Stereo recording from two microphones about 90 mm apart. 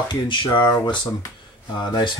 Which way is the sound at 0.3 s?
60° left (ahead or behind).